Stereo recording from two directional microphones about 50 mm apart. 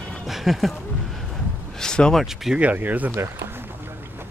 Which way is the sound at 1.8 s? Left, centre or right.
Centre.